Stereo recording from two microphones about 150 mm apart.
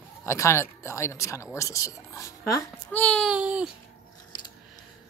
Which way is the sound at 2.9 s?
5° left (ahead or behind).